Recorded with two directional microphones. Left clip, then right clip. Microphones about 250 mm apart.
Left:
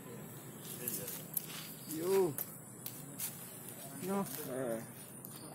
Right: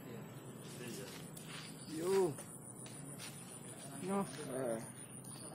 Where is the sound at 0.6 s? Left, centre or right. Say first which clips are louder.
Left 3 dB; left.